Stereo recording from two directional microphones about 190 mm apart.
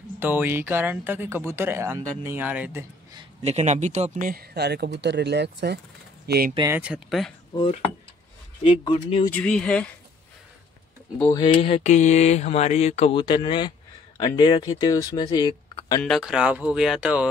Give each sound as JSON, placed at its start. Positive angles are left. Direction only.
{"t": 0.2, "sound": "speech", "side_deg": -10}
{"t": 3.4, "sound": "speech", "side_deg": -35}
{"t": 6.7, "sound": "speech", "side_deg": -5}
{"t": 7.5, "sound": "speech", "side_deg": 30}
{"t": 9.3, "sound": "speech", "side_deg": 5}
{"t": 11.5, "sound": "speech", "side_deg": 35}
{"t": 16.0, "sound": "speech", "side_deg": 0}